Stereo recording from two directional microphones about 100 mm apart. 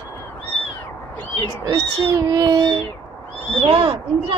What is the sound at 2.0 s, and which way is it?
Speech, 35° right (ahead or behind).